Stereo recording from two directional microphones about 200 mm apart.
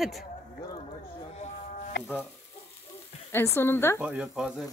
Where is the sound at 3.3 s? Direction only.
10° left (ahead or behind).